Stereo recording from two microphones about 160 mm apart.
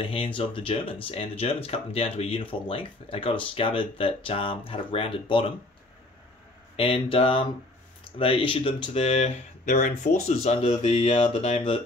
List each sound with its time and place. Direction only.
0.0 s speech: 35° left (ahead or behind)
6.8 s speech: 35° left (ahead or behind)